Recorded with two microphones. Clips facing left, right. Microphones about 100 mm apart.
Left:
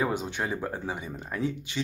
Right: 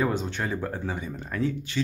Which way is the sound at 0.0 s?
15° left (ahead or behind).